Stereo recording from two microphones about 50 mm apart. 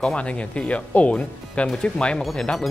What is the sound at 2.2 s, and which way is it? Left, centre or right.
Speech, centre.